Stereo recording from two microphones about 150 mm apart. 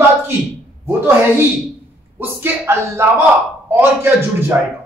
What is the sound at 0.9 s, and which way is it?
Speech, 15° right (ahead or behind).